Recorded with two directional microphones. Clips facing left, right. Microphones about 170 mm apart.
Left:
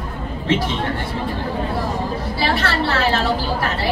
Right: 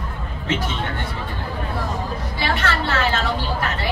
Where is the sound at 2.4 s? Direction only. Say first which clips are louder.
Left 3 dB; 35° left (ahead or behind).